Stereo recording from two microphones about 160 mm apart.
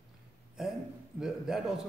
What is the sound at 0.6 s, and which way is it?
A man's voice, 5° right (ahead or behind).